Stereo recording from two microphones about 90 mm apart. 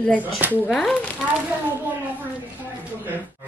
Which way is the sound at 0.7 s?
5° left (ahead or behind).